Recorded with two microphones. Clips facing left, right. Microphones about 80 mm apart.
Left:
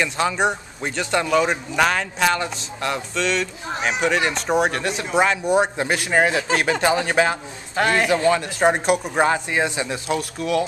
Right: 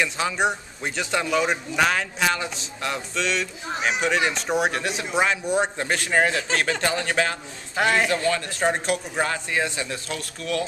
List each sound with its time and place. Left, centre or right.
0.0 s speech: centre
7.7 s speech: centre
8.2 s speech: centre